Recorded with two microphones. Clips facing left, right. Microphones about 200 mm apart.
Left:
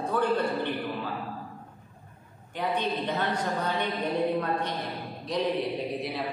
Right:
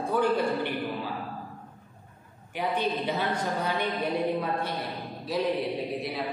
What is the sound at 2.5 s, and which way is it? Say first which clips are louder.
A man's voice: right 1 dB; 10° right (ahead or behind).